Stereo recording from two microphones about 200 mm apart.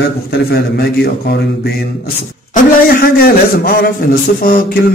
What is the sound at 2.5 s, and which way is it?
Speech, 50° left (ahead or behind).